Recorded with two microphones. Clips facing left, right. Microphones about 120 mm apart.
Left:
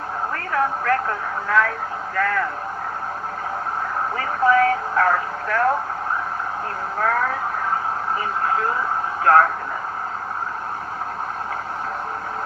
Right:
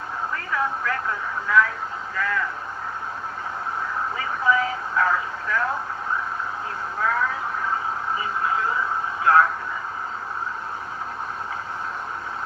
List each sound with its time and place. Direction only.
0.5 s telephone: 50° left (ahead or behind)
2.1 s speech: 50° left (ahead or behind)
4.2 s speech: 50° left (ahead or behind)
7.0 s speech: 45° left (ahead or behind)
9.2 s speech: 45° left (ahead or behind)